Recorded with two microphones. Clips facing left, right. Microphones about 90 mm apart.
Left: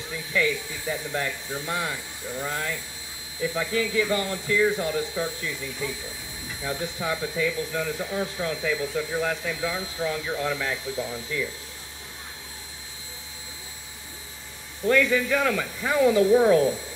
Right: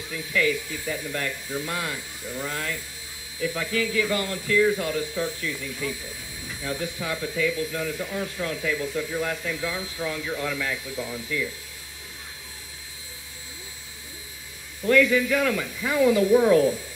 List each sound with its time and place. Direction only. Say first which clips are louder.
0.1 s speech: right 1 dB; 20° left (ahead or behind)
14.9 s speech: right 2 dB; 25° left (ahead or behind)